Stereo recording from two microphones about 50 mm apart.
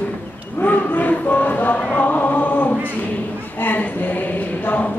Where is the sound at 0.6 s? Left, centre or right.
Left.